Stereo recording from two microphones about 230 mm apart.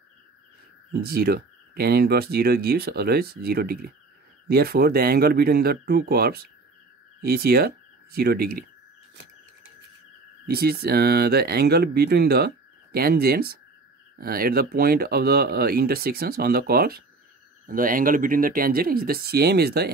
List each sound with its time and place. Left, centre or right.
1.0 s speech: right
10.4 s speech: right